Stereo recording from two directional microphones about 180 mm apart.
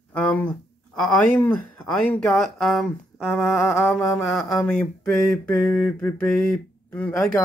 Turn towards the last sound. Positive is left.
turn(degrees=5)  # may be behind; listen again after turning